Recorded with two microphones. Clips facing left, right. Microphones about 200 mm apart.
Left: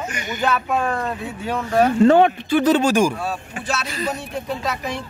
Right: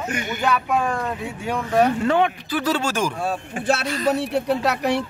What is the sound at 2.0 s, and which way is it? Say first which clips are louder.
Speech: left 7 dB; 35° left (ahead or behind).